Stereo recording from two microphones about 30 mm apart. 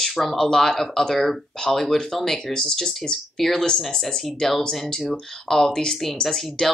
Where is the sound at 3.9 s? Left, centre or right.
Left.